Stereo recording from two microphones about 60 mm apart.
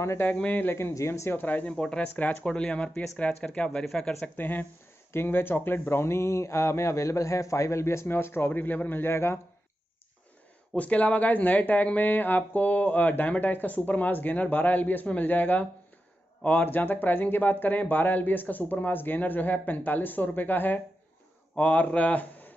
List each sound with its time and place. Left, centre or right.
0.0 s speech: left
0.5 s speech: left
0.9 s speech: left
1.3 s speech: left
1.7 s speech: centre
4.2 s speech: left
10.8 s speech: left